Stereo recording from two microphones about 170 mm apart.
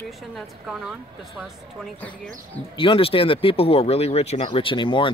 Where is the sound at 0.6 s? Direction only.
Centre (ahead or behind).